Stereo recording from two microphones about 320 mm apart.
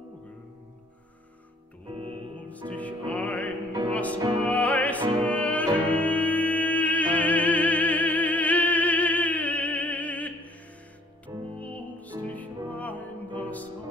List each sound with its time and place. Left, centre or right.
2.0 s music: centre
2.7 s music: centre